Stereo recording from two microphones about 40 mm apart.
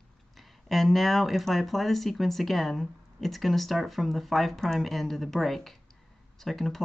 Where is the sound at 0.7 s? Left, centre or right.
Centre.